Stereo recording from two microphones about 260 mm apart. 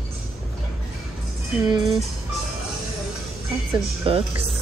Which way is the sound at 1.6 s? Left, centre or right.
Centre.